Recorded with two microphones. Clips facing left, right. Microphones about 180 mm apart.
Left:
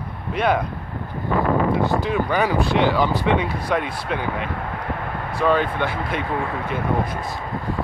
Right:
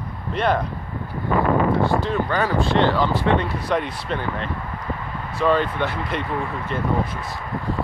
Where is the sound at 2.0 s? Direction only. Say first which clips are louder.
Left 1 dB; 15° left (ahead or behind).